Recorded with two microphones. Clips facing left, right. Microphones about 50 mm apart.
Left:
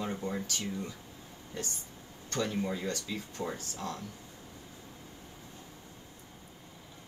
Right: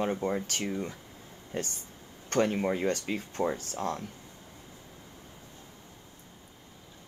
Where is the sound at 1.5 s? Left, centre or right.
Right.